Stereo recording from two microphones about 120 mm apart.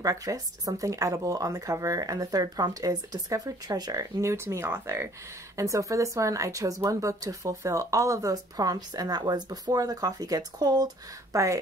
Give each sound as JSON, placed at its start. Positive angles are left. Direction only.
{"t": 0.0, "sound": "a woman's voice", "side_deg": -30}